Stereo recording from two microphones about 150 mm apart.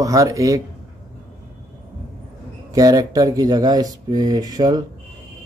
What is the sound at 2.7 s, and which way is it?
Speech, 25° right (ahead or behind).